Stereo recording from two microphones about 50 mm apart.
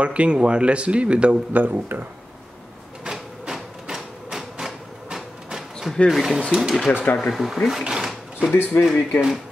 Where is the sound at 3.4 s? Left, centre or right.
Centre.